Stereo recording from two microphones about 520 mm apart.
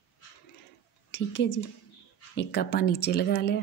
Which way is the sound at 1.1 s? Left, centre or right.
Centre.